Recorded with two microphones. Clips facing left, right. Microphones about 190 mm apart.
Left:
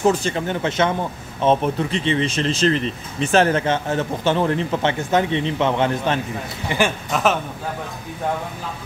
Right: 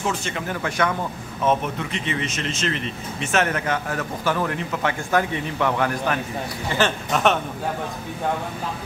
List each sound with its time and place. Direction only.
0.0 s speech: 35° left (ahead or behind)
7.1 s speech: centre (ahead or behind)